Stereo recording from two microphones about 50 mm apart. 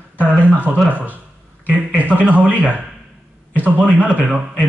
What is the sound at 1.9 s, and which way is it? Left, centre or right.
Speech, right.